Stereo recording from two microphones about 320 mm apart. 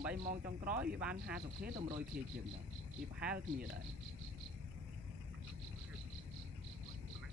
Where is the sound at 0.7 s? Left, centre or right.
Centre.